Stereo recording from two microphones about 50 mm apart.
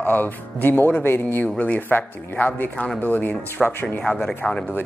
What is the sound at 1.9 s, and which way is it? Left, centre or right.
Speech, left.